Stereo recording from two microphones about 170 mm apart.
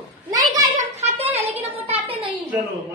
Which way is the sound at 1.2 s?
40° right (ahead or behind).